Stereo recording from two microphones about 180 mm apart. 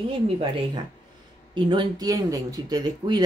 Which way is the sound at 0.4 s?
30° right (ahead or behind).